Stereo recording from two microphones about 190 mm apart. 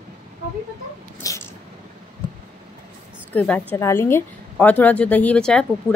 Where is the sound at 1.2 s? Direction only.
15° left (ahead or behind).